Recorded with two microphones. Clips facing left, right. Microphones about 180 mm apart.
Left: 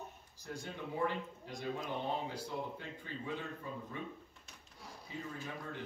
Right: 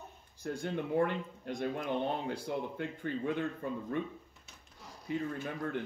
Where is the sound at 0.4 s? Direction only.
55° right (ahead or behind).